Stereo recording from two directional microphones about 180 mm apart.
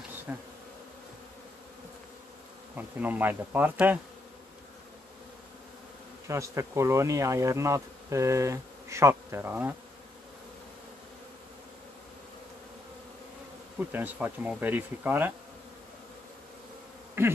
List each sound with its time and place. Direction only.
0.3 s bee: 10° right (ahead or behind)
2.7 s bee: 10° right (ahead or behind)
6.2 s bee: 15° right (ahead or behind)
13.7 s bee: 10° right (ahead or behind)
17.2 s bee: 15° right (ahead or behind)